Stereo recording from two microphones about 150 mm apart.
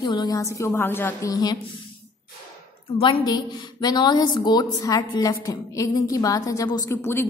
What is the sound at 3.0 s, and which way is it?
A woman's voice, 30° left (ahead or behind).